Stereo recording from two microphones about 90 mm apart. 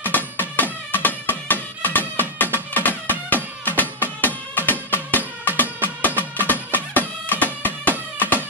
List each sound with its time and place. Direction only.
0.0 s music: 20° left (ahead or behind)
8.2 s cat: 20° left (ahead or behind)